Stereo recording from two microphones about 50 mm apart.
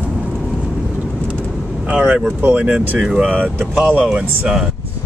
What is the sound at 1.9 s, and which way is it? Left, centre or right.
Speech, right.